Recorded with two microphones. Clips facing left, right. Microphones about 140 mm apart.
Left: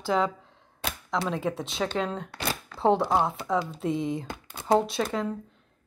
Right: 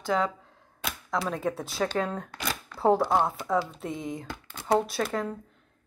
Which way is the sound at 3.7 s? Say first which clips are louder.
Left 6 dB; 30° left (ahead or behind).